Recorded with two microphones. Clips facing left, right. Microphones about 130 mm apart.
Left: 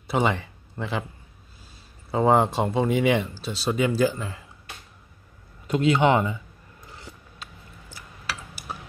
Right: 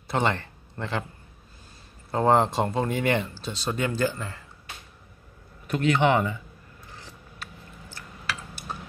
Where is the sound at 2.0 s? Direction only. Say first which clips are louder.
Left 1 dB; 5° left (ahead or behind).